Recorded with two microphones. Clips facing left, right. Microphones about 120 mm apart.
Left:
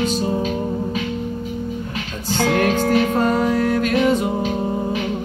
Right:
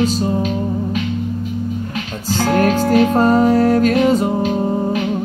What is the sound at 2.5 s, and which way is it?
Music, 40° right (ahead or behind).